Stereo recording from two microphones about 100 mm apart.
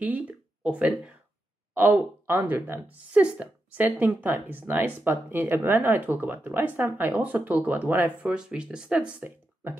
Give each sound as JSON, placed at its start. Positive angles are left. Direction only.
{"t": 0.0, "sound": "speech", "side_deg": -15}
{"t": 3.1, "sound": "speech", "side_deg": -10}